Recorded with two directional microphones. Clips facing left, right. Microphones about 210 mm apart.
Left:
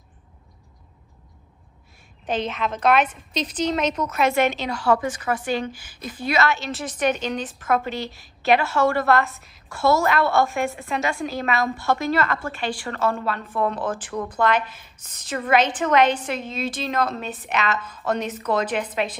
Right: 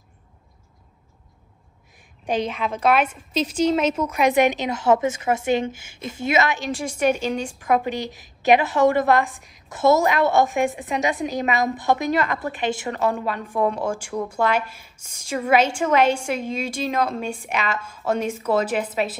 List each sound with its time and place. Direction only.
2.2 s a woman's voice: 15° right (ahead or behind)